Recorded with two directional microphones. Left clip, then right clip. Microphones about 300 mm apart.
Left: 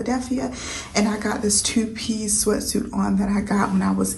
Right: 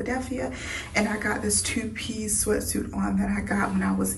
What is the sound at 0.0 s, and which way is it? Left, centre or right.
A woman's voice, centre.